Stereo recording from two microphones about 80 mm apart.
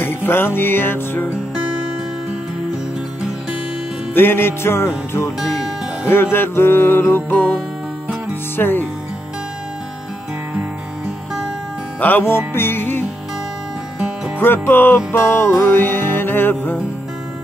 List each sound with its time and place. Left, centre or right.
0.0 s music: left
4.1 s music: left
6.3 s music: left
12.0 s music: left
14.4 s music: left